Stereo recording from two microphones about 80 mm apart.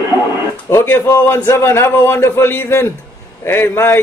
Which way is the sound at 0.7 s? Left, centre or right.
Left.